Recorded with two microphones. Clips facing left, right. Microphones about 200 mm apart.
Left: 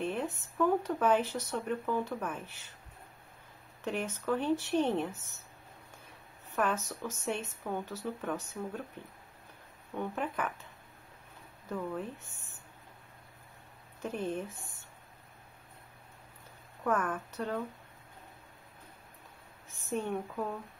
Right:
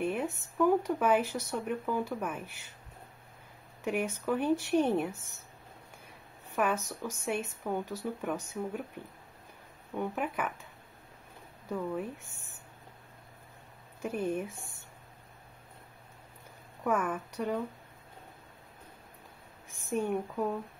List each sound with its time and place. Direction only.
0.0 s speech: 10° right (ahead or behind)
3.8 s speech: 10° right (ahead or behind)
6.5 s speech: 10° right (ahead or behind)
9.9 s speech: 10° right (ahead or behind)
14.0 s speech: 10° right (ahead or behind)
16.8 s speech: 10° right (ahead or behind)
19.9 s speech: 10° right (ahead or behind)